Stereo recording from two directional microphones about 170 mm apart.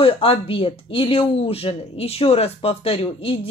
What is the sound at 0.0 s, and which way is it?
Speech, 35° left (ahead or behind).